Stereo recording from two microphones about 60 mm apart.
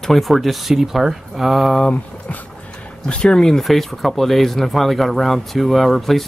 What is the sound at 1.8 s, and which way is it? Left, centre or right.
Speech, left.